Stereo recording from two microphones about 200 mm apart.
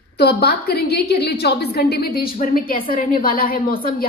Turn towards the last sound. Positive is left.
turn(degrees=45)  # may be behind; listen again after turning